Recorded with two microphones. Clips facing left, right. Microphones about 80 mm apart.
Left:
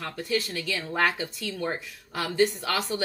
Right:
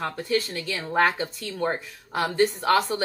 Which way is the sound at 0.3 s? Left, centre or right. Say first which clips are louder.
Right 1 dB; right.